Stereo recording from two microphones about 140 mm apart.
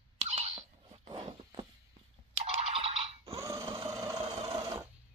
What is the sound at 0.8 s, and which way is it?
Walk, 35° right (ahead or behind).